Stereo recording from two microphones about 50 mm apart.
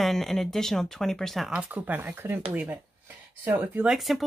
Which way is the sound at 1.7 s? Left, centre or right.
Right.